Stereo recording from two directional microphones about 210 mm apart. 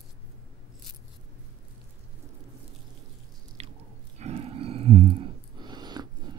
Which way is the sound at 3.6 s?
30° right (ahead or behind).